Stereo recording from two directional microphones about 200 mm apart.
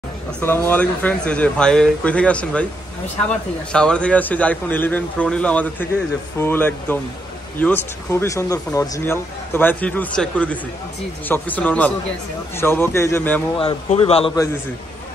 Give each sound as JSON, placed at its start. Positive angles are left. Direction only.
{"t": 0.4, "sound": "speech", "side_deg": 10}
{"t": 3.7, "sound": "speech", "side_deg": 5}
{"t": 13.6, "sound": "speech", "side_deg": 30}